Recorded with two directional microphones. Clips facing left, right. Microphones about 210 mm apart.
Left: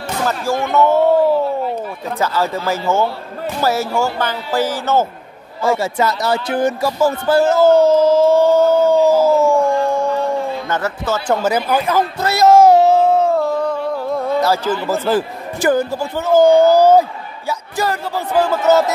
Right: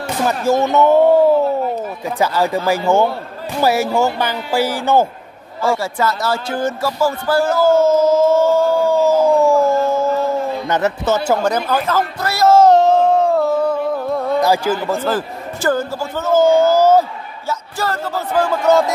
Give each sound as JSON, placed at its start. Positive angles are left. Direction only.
{"t": 0.3, "sound": "speech", "side_deg": -20}
{"t": 2.0, "sound": "speech", "side_deg": -15}
{"t": 5.7, "sound": "speech", "side_deg": 20}
{"t": 8.3, "sound": "a sound", "side_deg": 20}
{"t": 10.7, "sound": "speech", "side_deg": -20}
{"t": 11.4, "sound": "a sound", "side_deg": 10}
{"t": 14.4, "sound": "speech", "side_deg": -15}
{"t": 14.9, "sound": "speech", "side_deg": 10}